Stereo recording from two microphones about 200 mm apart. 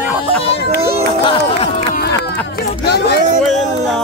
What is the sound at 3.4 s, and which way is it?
Music, centre (ahead or behind).